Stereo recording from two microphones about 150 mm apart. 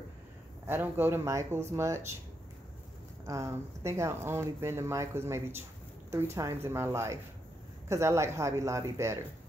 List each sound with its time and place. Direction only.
0.7 s speech: 15° right (ahead or behind)
3.3 s speech: 20° right (ahead or behind)